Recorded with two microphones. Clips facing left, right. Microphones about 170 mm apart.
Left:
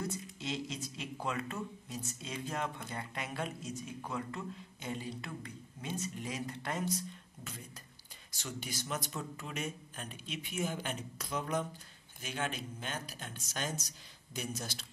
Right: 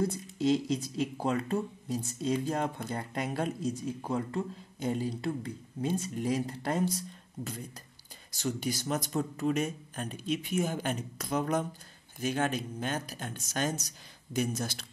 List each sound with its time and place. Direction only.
0.0 s speech: 35° right (ahead or behind)
8.3 s speech: 40° right (ahead or behind)